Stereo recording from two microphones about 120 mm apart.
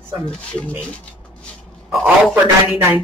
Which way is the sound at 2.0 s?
10° right (ahead or behind).